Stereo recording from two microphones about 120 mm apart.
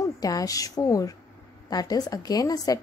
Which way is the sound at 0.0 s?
30° left (ahead or behind).